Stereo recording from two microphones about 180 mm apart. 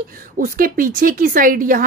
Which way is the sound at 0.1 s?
50° right (ahead or behind).